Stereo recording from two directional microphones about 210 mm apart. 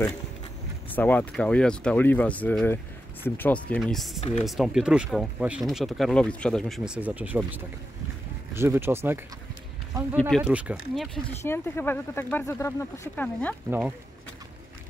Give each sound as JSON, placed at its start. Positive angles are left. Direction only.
{"t": 0.8, "sound": "speech", "side_deg": 10}
{"t": 10.3, "sound": "speech", "side_deg": -5}
{"t": 11.4, "sound": "speech", "side_deg": 10}
{"t": 13.7, "sound": "speech", "side_deg": -5}